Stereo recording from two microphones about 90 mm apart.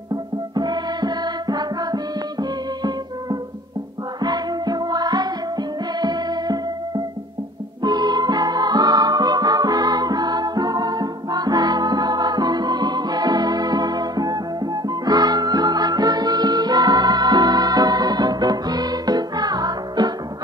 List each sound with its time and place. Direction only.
0.1 s music: 50° right (ahead or behind)
4.2 s music: 50° right (ahead or behind)